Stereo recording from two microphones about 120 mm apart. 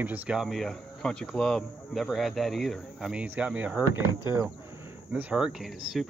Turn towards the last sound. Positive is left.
turn(degrees=0)  # may be behind; listen again after turning